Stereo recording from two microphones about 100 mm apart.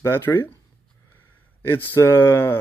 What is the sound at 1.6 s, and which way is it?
Speech, 25° left (ahead or behind).